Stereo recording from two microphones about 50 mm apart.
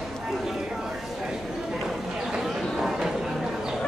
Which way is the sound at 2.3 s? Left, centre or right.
Centre.